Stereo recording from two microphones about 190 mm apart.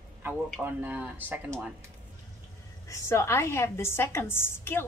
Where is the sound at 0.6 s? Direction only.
10° right (ahead or behind).